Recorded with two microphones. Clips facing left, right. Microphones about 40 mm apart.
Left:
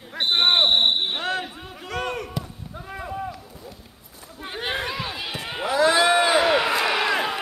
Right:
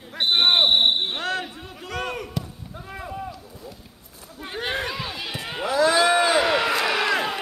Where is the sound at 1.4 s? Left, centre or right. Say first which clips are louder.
Even; centre.